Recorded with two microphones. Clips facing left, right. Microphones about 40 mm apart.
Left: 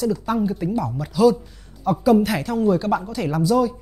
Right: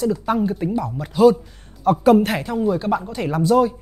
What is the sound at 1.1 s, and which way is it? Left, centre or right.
Speech, right.